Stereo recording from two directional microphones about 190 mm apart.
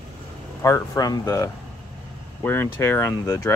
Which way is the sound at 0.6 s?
15° left (ahead or behind).